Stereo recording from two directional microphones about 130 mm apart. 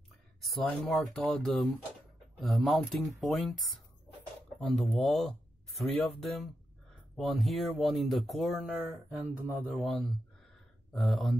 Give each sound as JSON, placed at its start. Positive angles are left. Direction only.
{"t": 0.4, "sound": "speech", "side_deg": 0}